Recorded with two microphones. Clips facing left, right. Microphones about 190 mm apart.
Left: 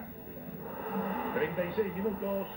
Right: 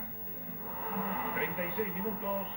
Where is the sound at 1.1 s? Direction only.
40° left (ahead or behind).